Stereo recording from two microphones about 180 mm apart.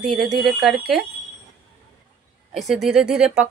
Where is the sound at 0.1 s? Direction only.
Centre (ahead or behind).